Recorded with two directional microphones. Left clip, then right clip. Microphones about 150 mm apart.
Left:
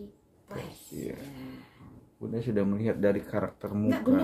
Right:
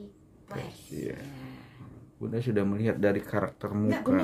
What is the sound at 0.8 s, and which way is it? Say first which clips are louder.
Speech: right 3 dB; 30° right (ahead or behind).